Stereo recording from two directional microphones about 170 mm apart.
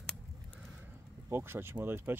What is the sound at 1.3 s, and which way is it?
Speech, 15° right (ahead or behind).